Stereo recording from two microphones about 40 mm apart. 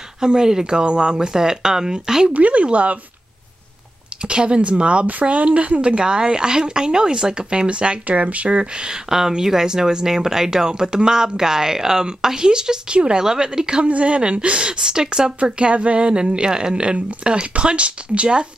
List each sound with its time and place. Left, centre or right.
0.2 s speech: centre
2.3 s speech: right
4.3 s speech: right
9.1 s speech: centre
13.8 s speech: right
14.8 s speech: centre